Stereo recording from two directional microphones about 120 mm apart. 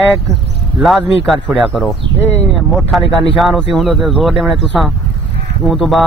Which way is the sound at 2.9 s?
Centre (ahead or behind).